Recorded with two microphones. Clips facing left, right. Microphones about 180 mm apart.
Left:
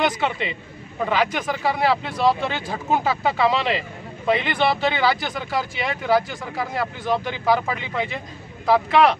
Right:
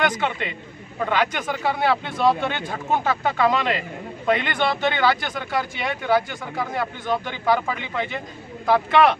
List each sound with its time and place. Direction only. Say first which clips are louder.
0.0 s speech: left 1 dB; 5° left (ahead or behind)